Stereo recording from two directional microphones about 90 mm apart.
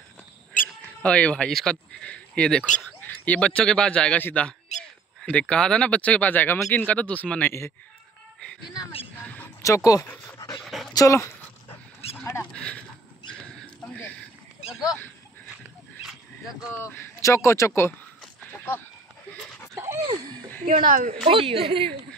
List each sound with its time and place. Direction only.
1.0 s speech: 15° left (ahead or behind)
9.2 s a sound: 20° left (ahead or behind)
9.6 s speech: 35° left (ahead or behind)
10.6 s dog: centre (ahead or behind)
11.0 s speech: 30° left (ahead or behind)
12.2 s speech: 20° left (ahead or behind)
12.5 s speech: 10° left (ahead or behind)
14.7 s a sound: 5° right (ahead or behind)
16.0 s dog: centre (ahead or behind)
16.7 s speech: 25° left (ahead or behind)
19.7 s a sound: 30° right (ahead or behind)
20.7 s a woman's voice: 90° right